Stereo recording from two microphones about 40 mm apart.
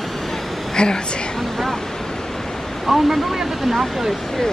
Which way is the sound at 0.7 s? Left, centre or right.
Centre.